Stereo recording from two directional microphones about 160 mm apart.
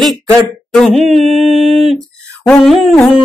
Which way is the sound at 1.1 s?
40° right (ahead or behind).